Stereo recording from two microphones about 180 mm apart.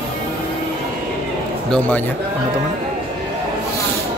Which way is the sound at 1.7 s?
10° left (ahead or behind).